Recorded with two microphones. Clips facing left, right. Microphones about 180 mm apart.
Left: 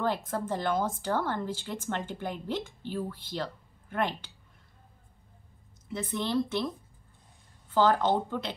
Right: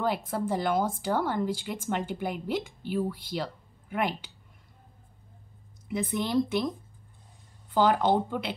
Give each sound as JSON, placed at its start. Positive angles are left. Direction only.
{"t": 0.0, "sound": "speech", "side_deg": -10}
{"t": 5.9, "sound": "speech", "side_deg": -10}
{"t": 7.7, "sound": "speech", "side_deg": -10}